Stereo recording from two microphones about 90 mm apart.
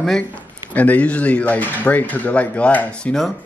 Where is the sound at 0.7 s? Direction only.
15° left (ahead or behind).